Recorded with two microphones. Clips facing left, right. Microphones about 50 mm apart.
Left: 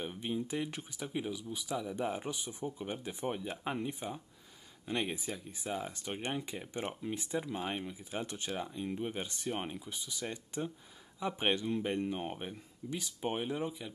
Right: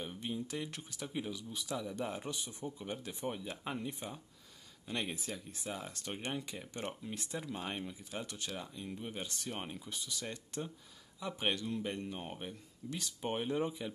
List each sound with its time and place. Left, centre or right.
0.0 s speech: centre
8.2 s speech: left; by 13.9 s centre